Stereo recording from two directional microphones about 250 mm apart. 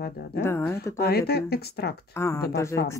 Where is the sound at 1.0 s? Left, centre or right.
Left.